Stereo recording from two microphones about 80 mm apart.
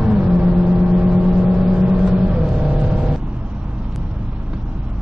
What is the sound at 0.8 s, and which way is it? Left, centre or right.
Vehicle, centre.